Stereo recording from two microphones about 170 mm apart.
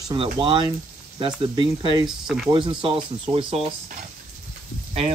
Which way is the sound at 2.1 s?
Centre (ahead or behind).